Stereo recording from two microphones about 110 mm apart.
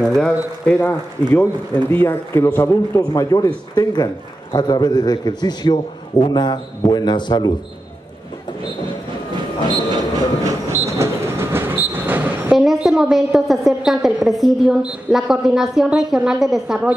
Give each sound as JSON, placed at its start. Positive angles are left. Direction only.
{"t": 0.2, "sound": "a man's voice", "side_deg": 10}
{"t": 10.4, "sound": "train", "side_deg": -25}
{"t": 12.5, "sound": "a woman's voice", "side_deg": 0}